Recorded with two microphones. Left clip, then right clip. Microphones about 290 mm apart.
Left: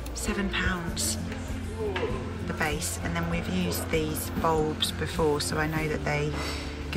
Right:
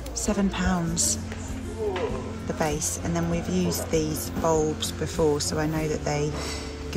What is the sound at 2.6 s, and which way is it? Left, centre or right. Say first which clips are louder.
Speech: right 2 dB; centre.